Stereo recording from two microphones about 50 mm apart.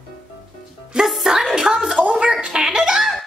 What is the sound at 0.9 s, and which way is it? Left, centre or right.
Music, centre.